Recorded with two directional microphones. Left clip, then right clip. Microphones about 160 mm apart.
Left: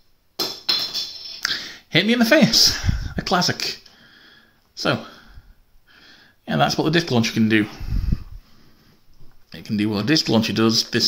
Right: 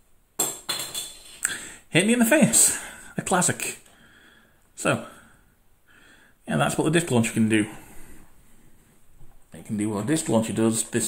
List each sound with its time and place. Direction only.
1.4 s a sound: 20° left (ahead or behind)
6.8 s speech: 10° left (ahead or behind)
9.5 s speech: 40° left (ahead or behind)